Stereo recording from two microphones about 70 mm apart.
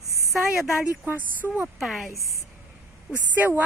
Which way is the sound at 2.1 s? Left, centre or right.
Left.